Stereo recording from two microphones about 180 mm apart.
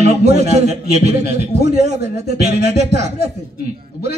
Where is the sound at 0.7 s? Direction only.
65° left (ahead or behind).